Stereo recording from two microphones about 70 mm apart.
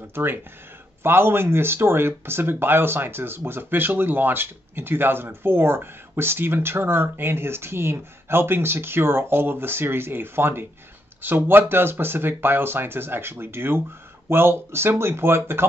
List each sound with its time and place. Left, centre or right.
0.1 s speech: right